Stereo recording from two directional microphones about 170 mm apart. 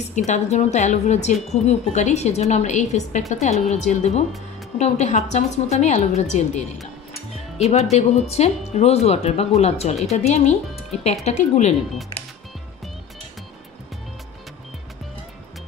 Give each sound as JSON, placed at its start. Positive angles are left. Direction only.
{"t": 0.1, "sound": "a woman's voice", "side_deg": 45}